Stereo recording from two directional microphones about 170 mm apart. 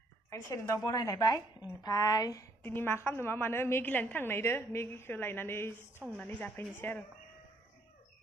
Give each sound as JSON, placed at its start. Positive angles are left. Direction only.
{"t": 0.3, "sound": "a woman's voice", "side_deg": 15}